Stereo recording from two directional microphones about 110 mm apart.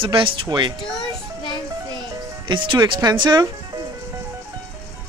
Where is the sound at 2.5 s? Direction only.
45° right (ahead or behind).